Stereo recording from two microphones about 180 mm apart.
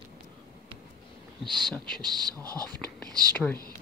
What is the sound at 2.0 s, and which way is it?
Speech, 20° right (ahead or behind).